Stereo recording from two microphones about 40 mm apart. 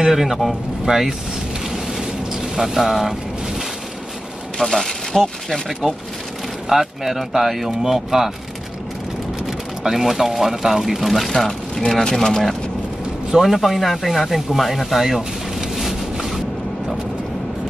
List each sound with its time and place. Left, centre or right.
0.0 s speech: centre
2.5 s speech: centre
4.6 s speech: centre
6.7 s speech: centre
9.8 s speech: centre
11.9 s speech: centre
13.3 s speech: centre
15.0 s vehicle: centre